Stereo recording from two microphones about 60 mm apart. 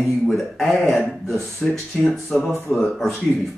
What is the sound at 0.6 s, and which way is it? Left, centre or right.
A man's voice, centre.